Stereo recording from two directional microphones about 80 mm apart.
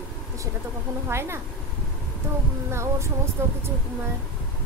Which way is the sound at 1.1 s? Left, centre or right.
Right.